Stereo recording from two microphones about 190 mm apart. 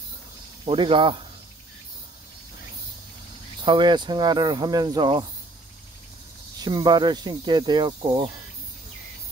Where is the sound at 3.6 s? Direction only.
25° right (ahead or behind).